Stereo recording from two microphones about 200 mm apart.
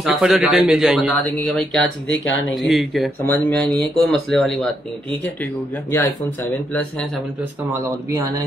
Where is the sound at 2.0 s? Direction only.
70° left (ahead or behind).